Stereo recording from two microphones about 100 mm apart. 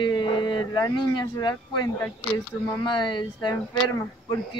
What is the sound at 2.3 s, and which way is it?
Speech, 50° left (ahead or behind).